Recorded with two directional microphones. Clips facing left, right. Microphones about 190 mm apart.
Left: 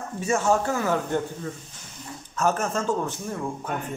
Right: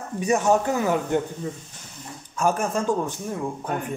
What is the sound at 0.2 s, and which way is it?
A man's voice, 15° right (ahead or behind).